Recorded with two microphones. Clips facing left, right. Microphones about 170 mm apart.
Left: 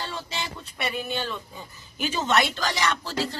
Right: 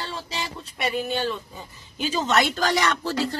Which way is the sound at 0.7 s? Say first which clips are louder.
Right 6 dB; 40° right (ahead or behind).